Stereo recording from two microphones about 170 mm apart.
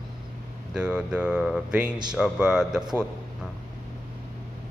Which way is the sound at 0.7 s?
5° right (ahead or behind).